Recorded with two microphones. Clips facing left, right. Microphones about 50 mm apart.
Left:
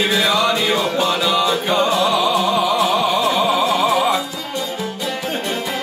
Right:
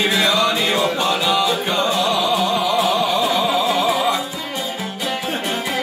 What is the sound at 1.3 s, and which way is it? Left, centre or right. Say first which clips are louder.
Music: left 2 dB; centre.